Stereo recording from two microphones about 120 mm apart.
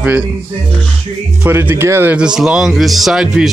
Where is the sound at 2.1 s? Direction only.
5° right (ahead or behind).